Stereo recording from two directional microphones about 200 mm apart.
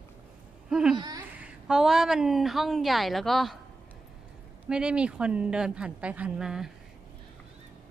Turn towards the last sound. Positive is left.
turn(degrees=-5)  # may be behind; listen again after turning